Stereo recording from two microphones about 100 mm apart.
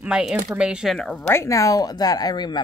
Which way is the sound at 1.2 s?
30° left (ahead or behind).